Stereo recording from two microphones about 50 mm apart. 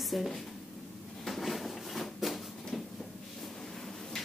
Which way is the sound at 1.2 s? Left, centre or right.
Centre.